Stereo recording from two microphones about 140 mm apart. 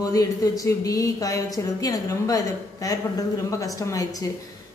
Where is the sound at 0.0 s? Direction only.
25° left (ahead or behind).